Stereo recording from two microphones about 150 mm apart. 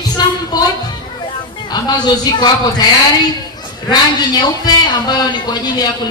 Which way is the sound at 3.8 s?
25° left (ahead or behind).